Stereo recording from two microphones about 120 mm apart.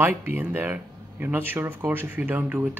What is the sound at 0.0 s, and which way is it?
Speech, 15° right (ahead or behind).